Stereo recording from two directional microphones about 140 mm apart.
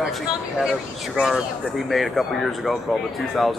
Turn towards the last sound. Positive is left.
turn(degrees=0)  # may be behind; listen again after turning